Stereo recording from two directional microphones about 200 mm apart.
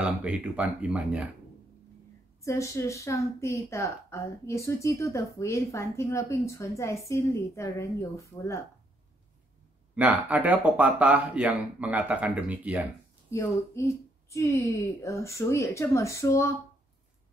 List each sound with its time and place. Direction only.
0.2 s speech: 5° right (ahead or behind)
2.4 s a woman's voice: 15° left (ahead or behind)
9.9 s speech: 10° right (ahead or behind)
13.3 s a woman's voice: 15° left (ahead or behind)